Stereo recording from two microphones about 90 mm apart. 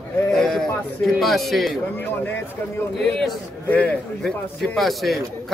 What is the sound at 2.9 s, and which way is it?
Speech, 5° left (ahead or behind).